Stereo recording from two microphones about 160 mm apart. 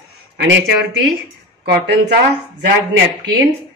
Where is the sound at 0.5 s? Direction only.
90° right.